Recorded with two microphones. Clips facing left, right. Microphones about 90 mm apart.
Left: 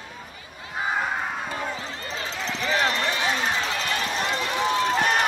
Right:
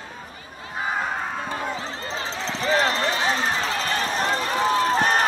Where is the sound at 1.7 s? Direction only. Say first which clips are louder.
Right 3 dB; 30° right (ahead or behind).